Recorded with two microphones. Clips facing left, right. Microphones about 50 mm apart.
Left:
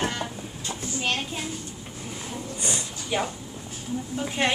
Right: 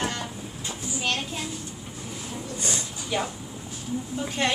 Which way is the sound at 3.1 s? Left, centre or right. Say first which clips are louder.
Left 1 dB; centre.